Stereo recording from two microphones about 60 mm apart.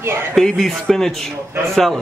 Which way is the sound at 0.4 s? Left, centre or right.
Centre.